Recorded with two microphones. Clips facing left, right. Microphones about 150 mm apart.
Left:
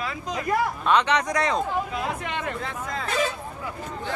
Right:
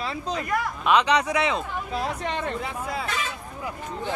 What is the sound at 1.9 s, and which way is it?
Speech, 35° right (ahead or behind).